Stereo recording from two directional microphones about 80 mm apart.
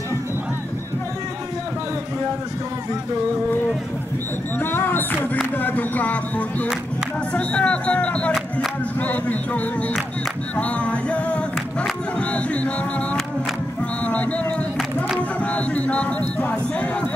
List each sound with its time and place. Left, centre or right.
4.6 s music: left